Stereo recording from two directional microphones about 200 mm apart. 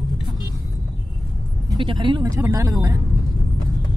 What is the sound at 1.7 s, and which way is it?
Speech, 25° right (ahead or behind).